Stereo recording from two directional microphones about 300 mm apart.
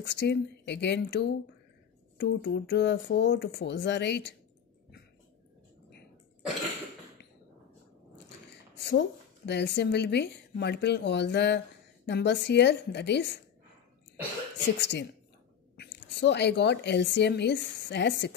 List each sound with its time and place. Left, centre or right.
0.0 s speech: left
8.5 s a sound: left
9.5 s speech: left
14.8 s a woman's voice: left